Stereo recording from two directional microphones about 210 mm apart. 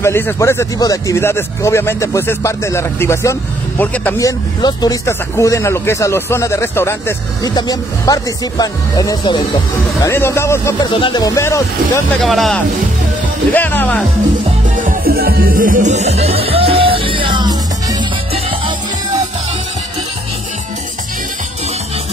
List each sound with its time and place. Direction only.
0.0 s speech: 15° left (ahead or behind)
12.2 s speech: centre (ahead or behind)
14.9 s music: 45° right (ahead or behind); by 18.4 s 20° right (ahead or behind)